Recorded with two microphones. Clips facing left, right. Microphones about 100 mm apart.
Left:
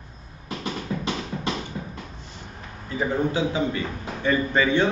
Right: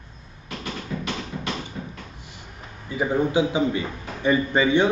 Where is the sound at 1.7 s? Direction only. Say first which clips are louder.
Left 1 dB; 20° left (ahead or behind).